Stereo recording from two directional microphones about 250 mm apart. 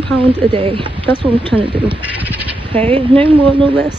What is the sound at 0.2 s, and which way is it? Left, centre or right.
Speech, right.